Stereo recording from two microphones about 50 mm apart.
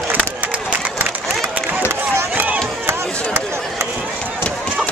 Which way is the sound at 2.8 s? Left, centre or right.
Right.